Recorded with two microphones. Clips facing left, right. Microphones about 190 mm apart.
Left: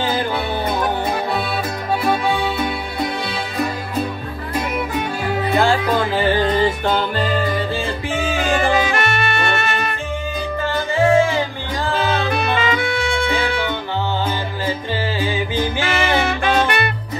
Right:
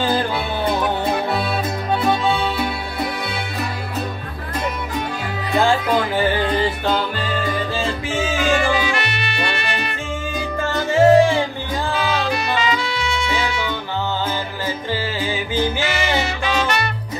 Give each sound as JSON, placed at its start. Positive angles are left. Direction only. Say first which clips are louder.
{"t": 2.0, "sound": "music", "louder": "even", "side_deg": 15}
{"t": 7.7, "sound": "music", "louder": "even", "side_deg": 55}
{"t": 10.6, "sound": "music", "louder": "right 3 dB", "side_deg": -40}
{"t": 12.1, "sound": "music", "louder": "left 2 dB", "side_deg": 55}
{"t": 15.8, "sound": "music", "louder": "left 2 dB", "side_deg": 55}